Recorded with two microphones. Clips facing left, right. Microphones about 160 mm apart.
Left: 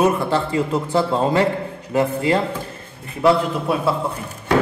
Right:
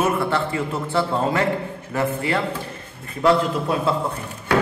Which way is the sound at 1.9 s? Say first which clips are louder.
Left 5 dB; 20° left (ahead or behind).